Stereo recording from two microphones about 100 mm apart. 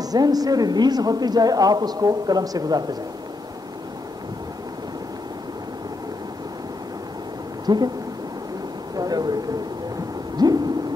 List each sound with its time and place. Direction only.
0.0 s a man's voice: 40° right (ahead or behind)
7.6 s speech: 45° right (ahead or behind)
8.9 s a sound: 40° right (ahead or behind)